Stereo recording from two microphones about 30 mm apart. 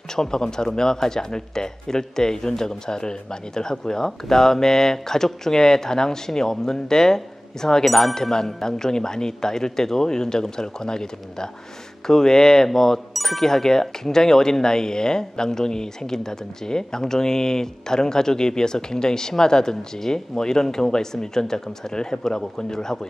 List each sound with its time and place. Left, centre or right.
0.1 s speech: left
7.8 s speech: centre
8.1 s speech: centre